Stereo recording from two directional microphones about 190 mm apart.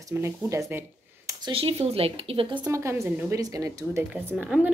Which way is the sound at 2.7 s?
15° right (ahead or behind).